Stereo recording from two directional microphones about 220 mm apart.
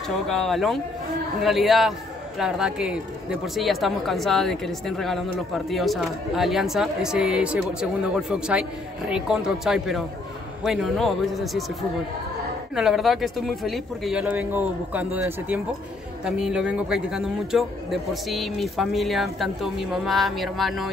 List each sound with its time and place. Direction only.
0.3 s a man's voice: centre (ahead or behind)
12.7 s a man's voice: centre (ahead or behind)